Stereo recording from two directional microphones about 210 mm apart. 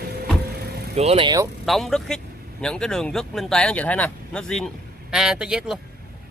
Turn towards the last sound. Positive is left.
turn(degrees=-5)  # may be behind; listen again after turning